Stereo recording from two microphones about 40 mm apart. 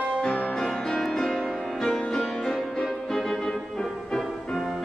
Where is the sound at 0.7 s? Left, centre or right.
Centre.